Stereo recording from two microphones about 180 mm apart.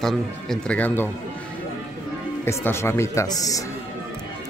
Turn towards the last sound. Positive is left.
turn(degrees=20)  # may be behind; listen again after turning